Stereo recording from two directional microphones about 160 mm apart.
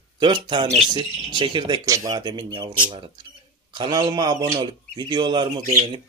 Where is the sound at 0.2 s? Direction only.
30° right (ahead or behind).